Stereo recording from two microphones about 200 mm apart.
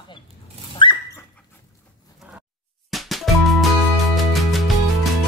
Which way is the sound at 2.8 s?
Centre (ahead or behind).